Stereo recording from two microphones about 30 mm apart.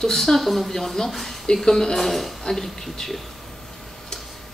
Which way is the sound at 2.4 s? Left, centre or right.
Centre.